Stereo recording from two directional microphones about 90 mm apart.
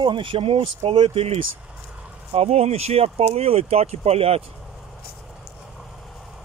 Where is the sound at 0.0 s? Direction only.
65° right (ahead or behind); by 4.5 s 90° right.